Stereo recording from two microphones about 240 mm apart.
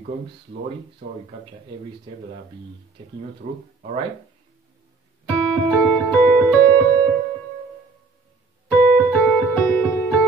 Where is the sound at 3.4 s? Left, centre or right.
Right.